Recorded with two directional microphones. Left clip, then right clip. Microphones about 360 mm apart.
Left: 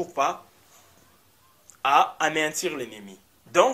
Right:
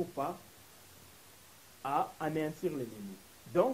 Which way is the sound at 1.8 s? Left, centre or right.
Centre.